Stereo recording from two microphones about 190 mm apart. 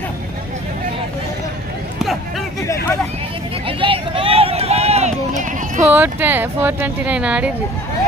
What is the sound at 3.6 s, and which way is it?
Run, 25° right (ahead or behind).